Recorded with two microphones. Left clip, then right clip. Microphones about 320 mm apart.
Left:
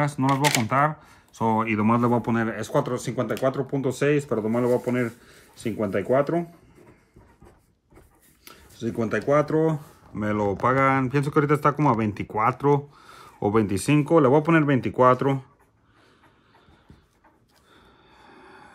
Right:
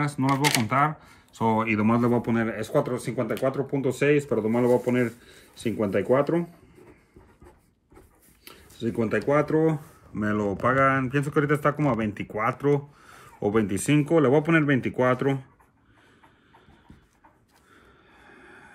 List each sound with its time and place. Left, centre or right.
0.2 s speech: centre
8.8 s speech: centre
10.1 s speech: centre
18.1 s a sound: left